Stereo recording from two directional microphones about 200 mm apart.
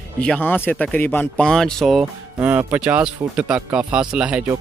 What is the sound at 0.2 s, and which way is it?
Speech, 5° left (ahead or behind).